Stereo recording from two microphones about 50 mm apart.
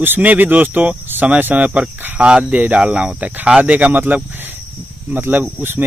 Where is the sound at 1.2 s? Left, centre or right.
Right.